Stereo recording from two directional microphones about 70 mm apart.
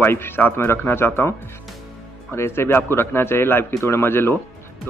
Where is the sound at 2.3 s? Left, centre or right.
Left.